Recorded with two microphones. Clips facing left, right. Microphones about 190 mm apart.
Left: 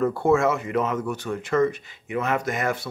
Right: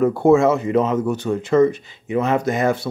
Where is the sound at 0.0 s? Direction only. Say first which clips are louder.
Right 6 dB; 20° right (ahead or behind).